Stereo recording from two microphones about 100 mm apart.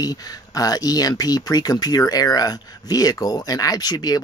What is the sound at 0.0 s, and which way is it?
Speech, 40° left (ahead or behind).